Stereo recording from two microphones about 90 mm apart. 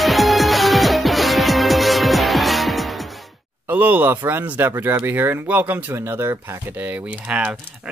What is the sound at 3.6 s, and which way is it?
Speech, 20° right (ahead or behind).